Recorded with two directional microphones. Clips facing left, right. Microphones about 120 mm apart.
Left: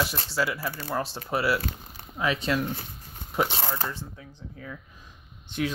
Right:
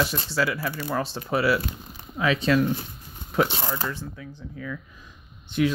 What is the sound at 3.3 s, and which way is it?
Speech, 10° left (ahead or behind).